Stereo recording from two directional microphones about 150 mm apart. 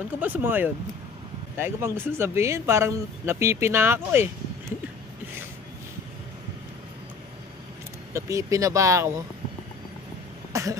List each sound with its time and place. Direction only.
0.2 s speech: 10° right (ahead or behind)
8.1 s speech: 20° right (ahead or behind)
10.5 s throat clearing: 20° right (ahead or behind)